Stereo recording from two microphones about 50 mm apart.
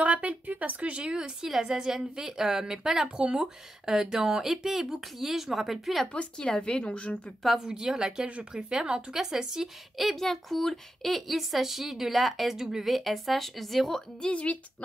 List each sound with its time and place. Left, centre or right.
0.0 s a woman's voice: right; by 6.0 s centre
6.1 s a woman's voice: left
7.4 s a woman's voice: centre
8.3 s speech: right; by 14.0 s centre
14.2 s a woman's voice: left